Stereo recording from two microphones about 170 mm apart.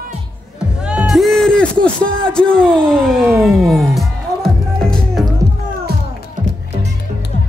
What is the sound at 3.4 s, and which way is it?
Music, centre (ahead or behind).